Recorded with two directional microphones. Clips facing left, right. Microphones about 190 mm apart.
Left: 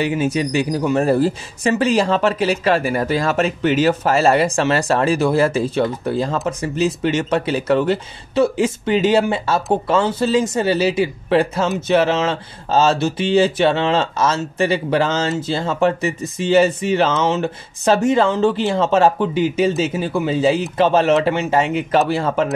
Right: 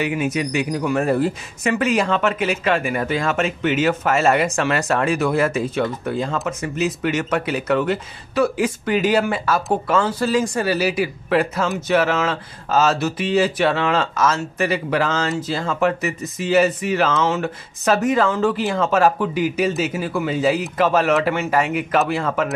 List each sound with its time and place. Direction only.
0.0 s speech: 30° left (ahead or behind)